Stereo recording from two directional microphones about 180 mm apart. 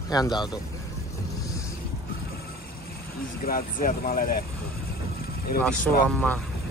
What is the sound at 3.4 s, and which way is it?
Speech, 55° left (ahead or behind).